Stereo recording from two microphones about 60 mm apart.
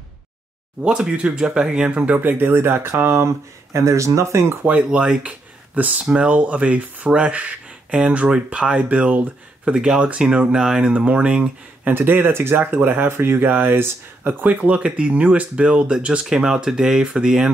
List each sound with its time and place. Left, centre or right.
0.8 s speech: centre; by 4.6 s right
4.8 s speech: centre
5.8 s speech: right
9.8 s speech: centre
11.8 s speech: right; by 17.5 s centre